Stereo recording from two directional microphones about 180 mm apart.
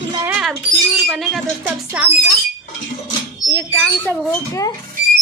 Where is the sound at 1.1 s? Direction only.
Centre (ahead or behind).